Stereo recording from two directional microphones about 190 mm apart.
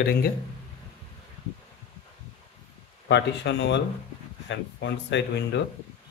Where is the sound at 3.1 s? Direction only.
65° left (ahead or behind).